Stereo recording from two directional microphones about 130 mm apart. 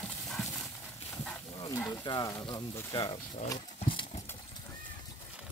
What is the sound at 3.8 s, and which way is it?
Clip-clop, 40° left (ahead or behind).